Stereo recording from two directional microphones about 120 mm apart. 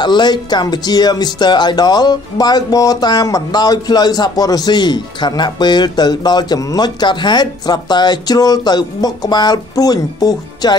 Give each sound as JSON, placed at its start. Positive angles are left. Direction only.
{"t": 0.0, "sound": "speech", "side_deg": 40}